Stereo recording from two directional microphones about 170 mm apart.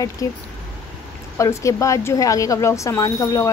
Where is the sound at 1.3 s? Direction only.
20° left (ahead or behind).